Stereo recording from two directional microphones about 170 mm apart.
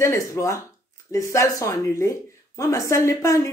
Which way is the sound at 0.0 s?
15° left (ahead or behind).